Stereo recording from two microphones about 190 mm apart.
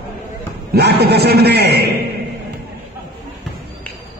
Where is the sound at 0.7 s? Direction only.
60° right (ahead or behind).